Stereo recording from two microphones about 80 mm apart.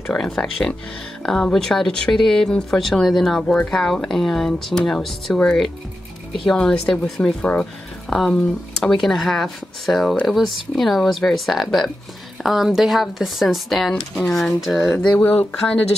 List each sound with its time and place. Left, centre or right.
0.0 s a woman's voice: centre
15.0 s speech: centre